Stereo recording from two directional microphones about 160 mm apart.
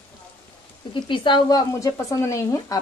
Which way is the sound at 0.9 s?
30° left (ahead or behind).